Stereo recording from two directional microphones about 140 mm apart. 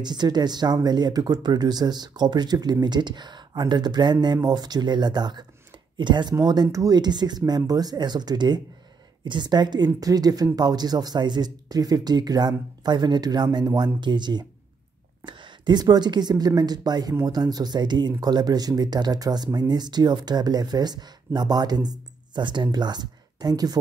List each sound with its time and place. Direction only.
0.0 s speech: 30° right (ahead or behind)